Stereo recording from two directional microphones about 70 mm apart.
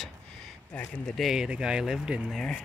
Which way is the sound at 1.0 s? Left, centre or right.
Centre.